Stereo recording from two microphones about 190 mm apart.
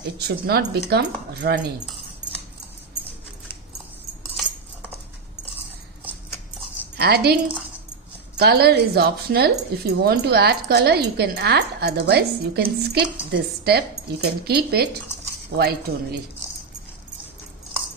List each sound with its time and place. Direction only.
0.2 s speech: 60° right (ahead or behind)
7.0 s speech: 55° right (ahead or behind)
8.4 s speech: 55° right (ahead or behind)